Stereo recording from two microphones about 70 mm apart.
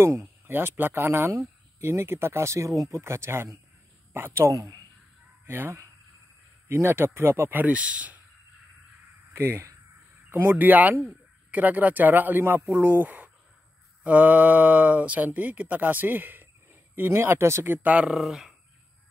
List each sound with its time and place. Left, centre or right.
0.5 s speech: right
4.5 s speech: right
5.4 s speech: right
9.3 s speech: right
10.5 s speech: right
17.6 s speech: right
18.1 s speech: centre